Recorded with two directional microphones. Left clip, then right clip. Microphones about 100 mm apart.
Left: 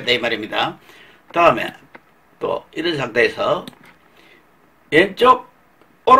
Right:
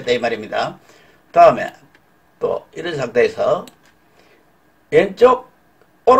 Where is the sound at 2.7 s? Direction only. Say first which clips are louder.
Even; 30° right (ahead or behind).